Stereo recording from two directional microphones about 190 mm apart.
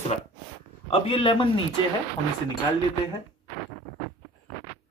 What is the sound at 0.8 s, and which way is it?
Speech, 30° left (ahead or behind).